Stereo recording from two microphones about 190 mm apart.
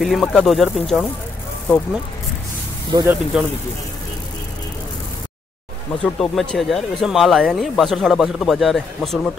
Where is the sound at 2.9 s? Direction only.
25° right (ahead or behind).